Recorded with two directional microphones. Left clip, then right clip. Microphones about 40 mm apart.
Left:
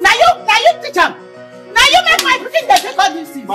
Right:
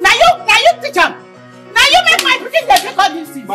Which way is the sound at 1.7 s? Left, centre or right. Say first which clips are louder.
Even; centre.